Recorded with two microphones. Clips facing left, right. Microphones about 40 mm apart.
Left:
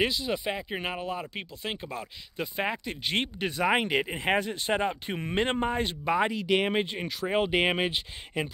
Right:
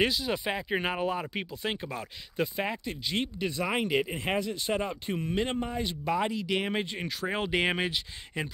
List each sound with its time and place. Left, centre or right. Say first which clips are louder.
0.0 s speech: even; centre
2.5 s speech: left 2 dB; centre
3.1 s speech: left 2 dB; left
4.4 s speech: left 2 dB; left
6.0 s speech: left 3 dB; left
7.0 s speech: left 4 dB; centre